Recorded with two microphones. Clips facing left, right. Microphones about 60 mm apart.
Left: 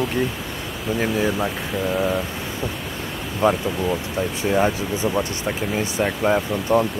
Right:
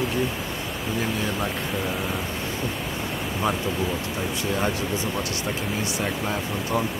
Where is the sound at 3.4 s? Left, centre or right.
Centre.